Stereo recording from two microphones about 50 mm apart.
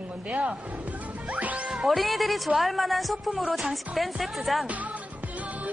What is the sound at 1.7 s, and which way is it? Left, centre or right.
Speech, centre.